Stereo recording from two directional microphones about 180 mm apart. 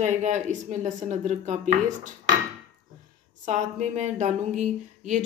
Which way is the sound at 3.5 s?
40° right (ahead or behind).